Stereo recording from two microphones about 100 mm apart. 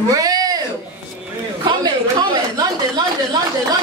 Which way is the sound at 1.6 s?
45° right (ahead or behind).